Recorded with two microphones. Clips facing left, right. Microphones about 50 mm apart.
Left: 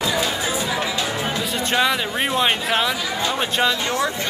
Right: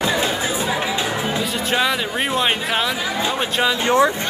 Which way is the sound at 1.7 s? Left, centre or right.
Centre.